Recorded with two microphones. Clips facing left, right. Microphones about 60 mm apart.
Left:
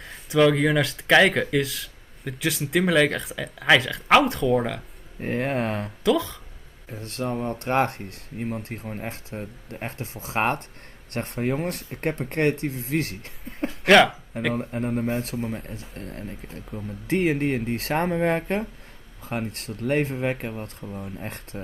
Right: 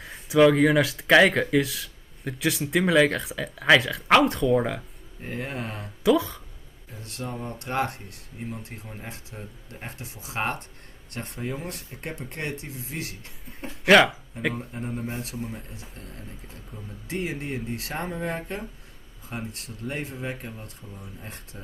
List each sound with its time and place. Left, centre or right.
0.0 s speech: centre
5.2 s speech: left
6.0 s speech: centre
6.9 s speech: left
13.8 s speech: centre
14.5 s speech: left